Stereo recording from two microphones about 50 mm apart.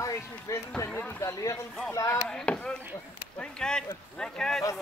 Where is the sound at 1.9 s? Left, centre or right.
Left.